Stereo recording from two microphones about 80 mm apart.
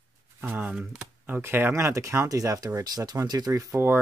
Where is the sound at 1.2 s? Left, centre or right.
Right.